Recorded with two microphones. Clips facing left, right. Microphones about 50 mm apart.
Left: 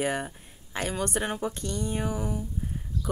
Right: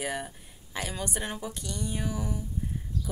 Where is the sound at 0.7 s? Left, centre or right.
Left.